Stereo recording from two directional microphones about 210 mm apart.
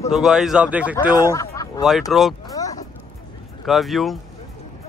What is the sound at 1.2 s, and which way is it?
Speech, 15° left (ahead or behind).